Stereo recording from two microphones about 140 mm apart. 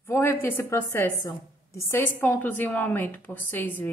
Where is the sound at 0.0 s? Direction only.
15° left (ahead or behind).